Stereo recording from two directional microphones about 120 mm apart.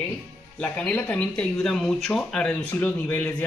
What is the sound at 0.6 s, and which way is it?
Speech, 10° left (ahead or behind).